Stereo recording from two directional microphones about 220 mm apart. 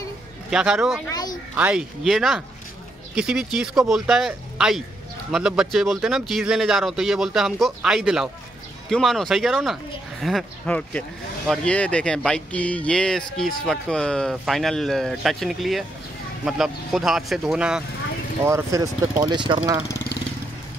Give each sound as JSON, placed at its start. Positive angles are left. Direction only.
{"t": 0.5, "sound": "speech", "side_deg": -5}
{"t": 18.4, "sound": "speech", "side_deg": -15}